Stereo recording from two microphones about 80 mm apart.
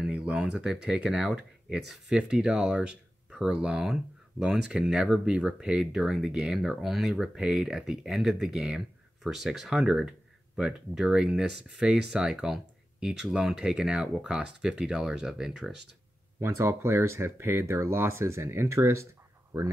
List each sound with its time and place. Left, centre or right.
0.1 s a sound: centre
0.4 s speech: centre
16.3 s speech: right